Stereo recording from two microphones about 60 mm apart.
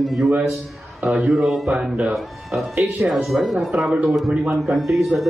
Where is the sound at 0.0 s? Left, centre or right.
Centre.